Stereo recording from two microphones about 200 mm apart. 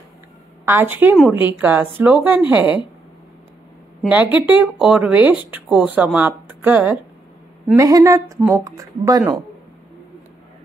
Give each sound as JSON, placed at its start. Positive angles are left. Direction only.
{"t": 0.7, "sound": "speech", "side_deg": -10}
{"t": 4.0, "sound": "speech", "side_deg": -5}